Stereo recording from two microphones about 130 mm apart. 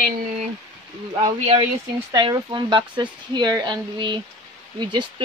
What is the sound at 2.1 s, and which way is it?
Speech, 35° right (ahead or behind).